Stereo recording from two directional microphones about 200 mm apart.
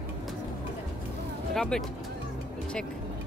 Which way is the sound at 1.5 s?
5° left (ahead or behind).